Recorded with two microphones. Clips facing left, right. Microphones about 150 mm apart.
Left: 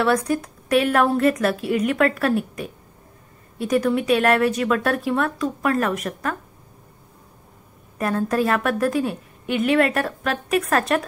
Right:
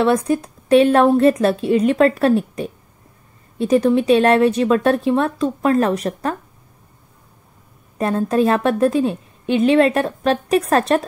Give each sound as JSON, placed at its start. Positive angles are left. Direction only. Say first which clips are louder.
{"t": 0.0, "sound": "a woman's voice", "louder": "right 4 dB", "side_deg": -25}
{"t": 8.0, "sound": "a woman's voice", "louder": "right 4 dB", "side_deg": -25}